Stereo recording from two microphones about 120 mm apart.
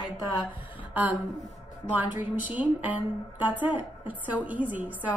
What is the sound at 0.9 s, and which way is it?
A woman's voice, 15° right (ahead or behind).